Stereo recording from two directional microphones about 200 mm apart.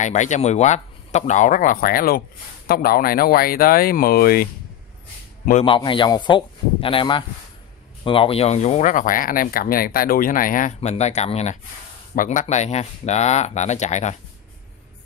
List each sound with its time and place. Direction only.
0.0 s a man's voice: 35° left (ahead or behind)
5.7 s speech: 25° left (ahead or behind)